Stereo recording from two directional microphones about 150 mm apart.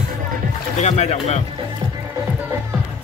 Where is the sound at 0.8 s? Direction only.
50° left (ahead or behind).